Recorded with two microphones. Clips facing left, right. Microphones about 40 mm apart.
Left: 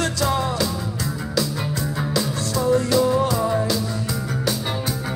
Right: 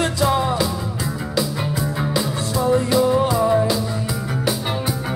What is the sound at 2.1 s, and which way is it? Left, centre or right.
Music, centre.